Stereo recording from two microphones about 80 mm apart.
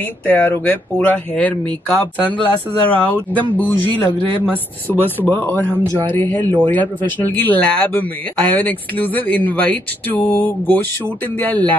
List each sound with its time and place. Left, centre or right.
0.3 s speech: left